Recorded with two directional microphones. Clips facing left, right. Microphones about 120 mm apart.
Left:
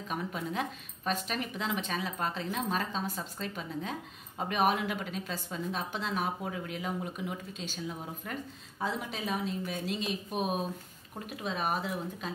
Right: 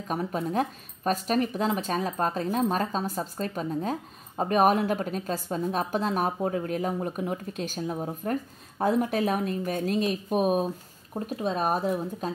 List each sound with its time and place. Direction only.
0.1 s a woman's voice: 40° right (ahead or behind)